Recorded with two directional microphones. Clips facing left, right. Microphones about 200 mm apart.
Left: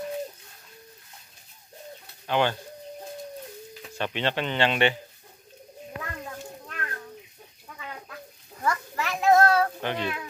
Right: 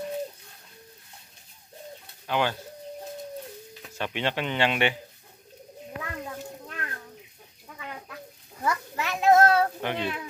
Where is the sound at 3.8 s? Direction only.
10° right (ahead or behind).